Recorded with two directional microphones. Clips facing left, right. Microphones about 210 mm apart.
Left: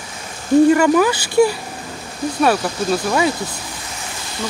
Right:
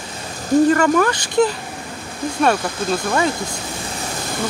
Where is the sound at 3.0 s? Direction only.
5° left (ahead or behind).